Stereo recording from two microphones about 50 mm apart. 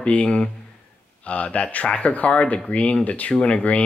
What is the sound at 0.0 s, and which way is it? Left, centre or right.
A man's voice, left.